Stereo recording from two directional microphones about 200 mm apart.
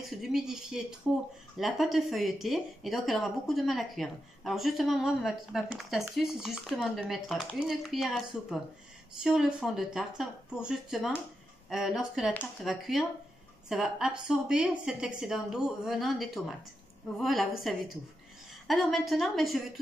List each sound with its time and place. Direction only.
0.0 s a woman's voice: centre (ahead or behind)